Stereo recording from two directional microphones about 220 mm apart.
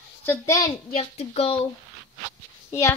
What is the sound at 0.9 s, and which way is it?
Speech, 30° left (ahead or behind).